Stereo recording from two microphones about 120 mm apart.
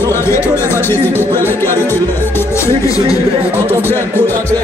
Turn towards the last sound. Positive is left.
turn(degrees=15)  # may be behind; listen again after turning